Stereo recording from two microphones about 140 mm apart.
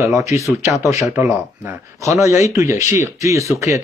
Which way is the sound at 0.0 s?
20° right (ahead or behind).